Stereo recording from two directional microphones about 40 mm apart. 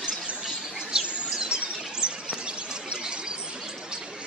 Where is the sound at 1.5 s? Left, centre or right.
Right.